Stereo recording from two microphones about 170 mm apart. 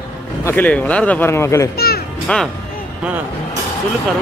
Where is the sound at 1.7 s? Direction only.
65° left (ahead or behind).